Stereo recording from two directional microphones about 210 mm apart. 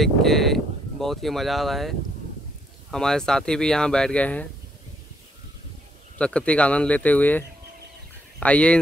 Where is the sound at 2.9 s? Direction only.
5° left (ahead or behind).